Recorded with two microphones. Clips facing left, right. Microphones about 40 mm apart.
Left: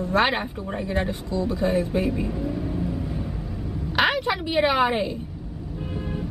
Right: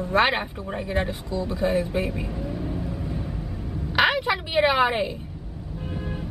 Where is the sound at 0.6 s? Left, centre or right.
Centre.